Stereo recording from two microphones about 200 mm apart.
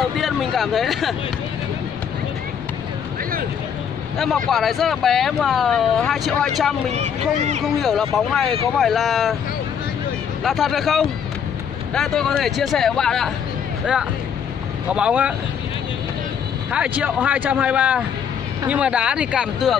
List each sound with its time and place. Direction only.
0.0 s speech: centre (ahead or behind)
4.5 s speech: centre (ahead or behind)
6.9 s speech: 35° right (ahead or behind)
7.6 s speech: centre (ahead or behind)
10.4 s speech: centre (ahead or behind)
14.9 s speech: 5° right (ahead or behind)
16.7 s a man's voice: 5° right (ahead or behind)